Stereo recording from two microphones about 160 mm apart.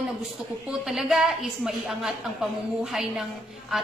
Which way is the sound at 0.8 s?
5° right (ahead or behind).